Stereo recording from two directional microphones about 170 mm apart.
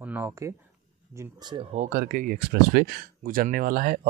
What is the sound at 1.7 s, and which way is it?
Speech, 45° right (ahead or behind).